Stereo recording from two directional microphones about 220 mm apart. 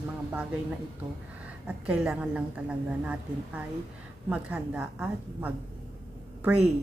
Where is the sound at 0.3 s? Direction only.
5° right (ahead or behind).